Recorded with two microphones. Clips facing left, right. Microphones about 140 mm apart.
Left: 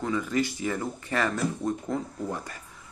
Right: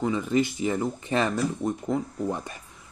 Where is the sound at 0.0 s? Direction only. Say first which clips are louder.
Right 3 dB; 20° right (ahead or behind).